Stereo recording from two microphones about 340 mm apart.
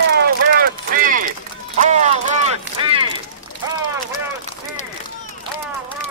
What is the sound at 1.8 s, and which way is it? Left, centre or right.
Run, centre.